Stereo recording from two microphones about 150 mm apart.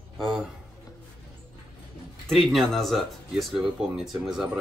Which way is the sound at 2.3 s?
Centre (ahead or behind).